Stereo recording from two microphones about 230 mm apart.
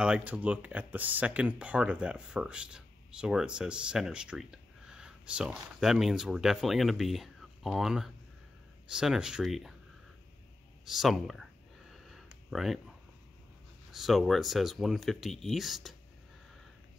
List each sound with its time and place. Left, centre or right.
0.0 s speech: centre
10.9 s speech: centre
11.9 s a sound: centre
13.9 s speech: centre